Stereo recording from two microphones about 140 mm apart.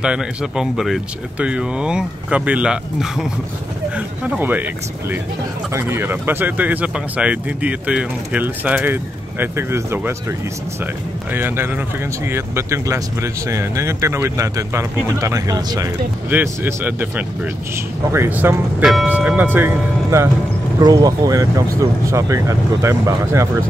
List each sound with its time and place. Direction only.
0.0 s speech: 5° right (ahead or behind)
5.7 s speech: 20° right (ahead or behind)
11.3 s speech: 15° right (ahead or behind)
16.3 s speech: 10° right (ahead or behind)
18.1 s speech: 15° right (ahead or behind)
20.8 s speech: 30° right (ahead or behind)